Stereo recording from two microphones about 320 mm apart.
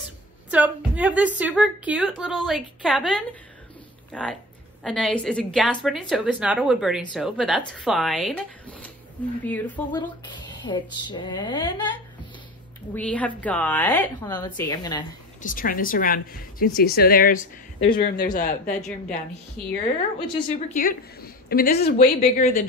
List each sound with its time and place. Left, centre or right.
0.5 s a woman's voice: centre
12.9 s a woman's voice: centre
15.4 s a woman's voice: left
20.3 s a woman's voice: left